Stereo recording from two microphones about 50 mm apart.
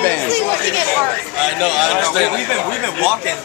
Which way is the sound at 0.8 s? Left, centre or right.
Left.